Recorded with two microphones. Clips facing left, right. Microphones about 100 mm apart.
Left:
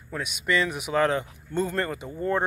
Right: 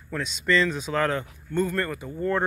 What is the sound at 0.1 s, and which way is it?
A man's voice, 10° left (ahead or behind).